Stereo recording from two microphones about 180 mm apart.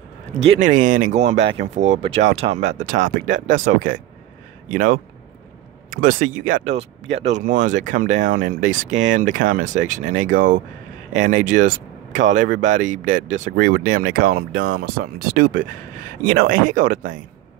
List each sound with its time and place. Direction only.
0.5 s speech: 45° right (ahead or behind)